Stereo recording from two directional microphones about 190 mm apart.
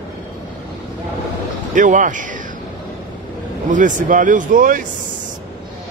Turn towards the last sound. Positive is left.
turn(degrees=-45)  # may be behind; listen again after turning